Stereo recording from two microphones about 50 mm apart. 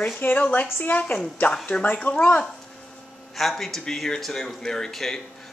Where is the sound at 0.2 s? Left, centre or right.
Left.